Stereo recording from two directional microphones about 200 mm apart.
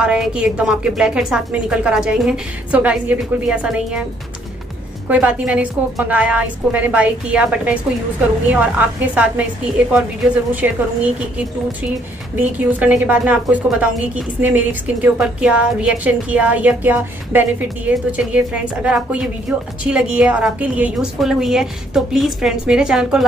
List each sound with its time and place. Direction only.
0.0 s a woman's voice: 5° right (ahead or behind)
5.0 s a woman's voice: 5° right (ahead or behind)
10.5 s a woman's voice: 5° right (ahead or behind)